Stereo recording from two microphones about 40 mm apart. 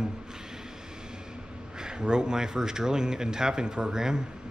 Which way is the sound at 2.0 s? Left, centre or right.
Right.